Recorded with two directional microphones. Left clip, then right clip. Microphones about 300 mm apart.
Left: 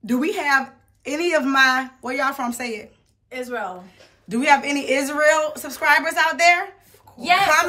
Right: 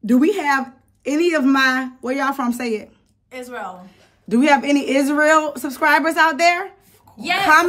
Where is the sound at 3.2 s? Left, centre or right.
Centre.